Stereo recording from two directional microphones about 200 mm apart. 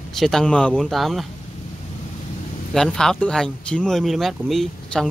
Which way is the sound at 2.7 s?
Centre (ahead or behind).